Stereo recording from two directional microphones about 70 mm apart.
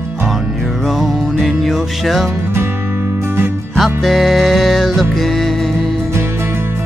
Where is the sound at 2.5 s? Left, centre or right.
Right.